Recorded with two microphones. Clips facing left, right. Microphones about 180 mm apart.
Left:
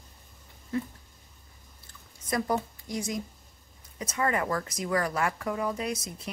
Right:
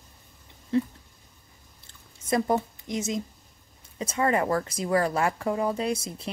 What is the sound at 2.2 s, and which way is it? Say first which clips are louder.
A woman's voice: right 4 dB; 25° right (ahead or behind).